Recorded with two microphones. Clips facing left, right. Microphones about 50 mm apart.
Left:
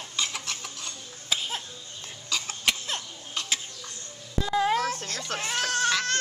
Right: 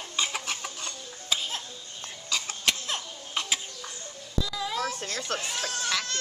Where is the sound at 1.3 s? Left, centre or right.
Centre.